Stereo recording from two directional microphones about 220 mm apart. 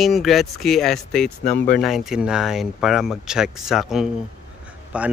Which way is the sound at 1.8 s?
Centre (ahead or behind).